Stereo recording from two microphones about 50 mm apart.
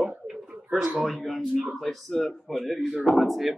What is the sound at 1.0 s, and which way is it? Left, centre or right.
Speech, centre.